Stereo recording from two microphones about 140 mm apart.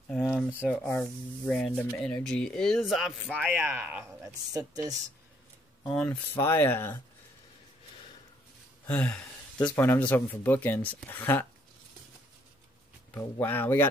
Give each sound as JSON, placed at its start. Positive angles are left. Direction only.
{"t": 0.1, "sound": "a sound", "side_deg": 5}
{"t": 0.7, "sound": "speech", "side_deg": 10}
{"t": 3.3, "sound": "speech", "side_deg": -10}
{"t": 4.5, "sound": "speech", "side_deg": -25}
{"t": 5.9, "sound": "speech", "side_deg": 5}
{"t": 6.3, "sound": "speech", "side_deg": 20}
{"t": 8.8, "sound": "speech", "side_deg": 10}
{"t": 13.1, "sound": "speech", "side_deg": 15}